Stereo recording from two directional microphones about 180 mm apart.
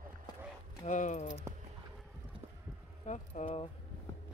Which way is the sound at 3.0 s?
40° left (ahead or behind).